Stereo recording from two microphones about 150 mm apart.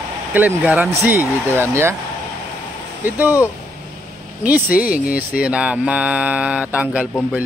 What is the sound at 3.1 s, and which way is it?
Mantra, 10° right (ahead or behind).